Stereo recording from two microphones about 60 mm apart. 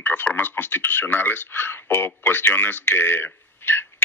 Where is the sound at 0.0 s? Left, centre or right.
Left.